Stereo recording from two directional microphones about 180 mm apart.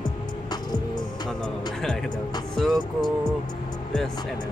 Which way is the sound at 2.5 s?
Centre (ahead or behind).